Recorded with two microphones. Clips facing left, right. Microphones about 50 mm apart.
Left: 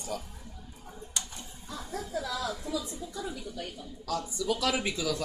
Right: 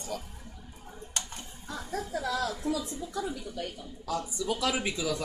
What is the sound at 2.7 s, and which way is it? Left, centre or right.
A woman's voice, right.